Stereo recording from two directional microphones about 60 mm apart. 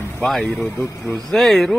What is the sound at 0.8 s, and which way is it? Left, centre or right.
Speech, left.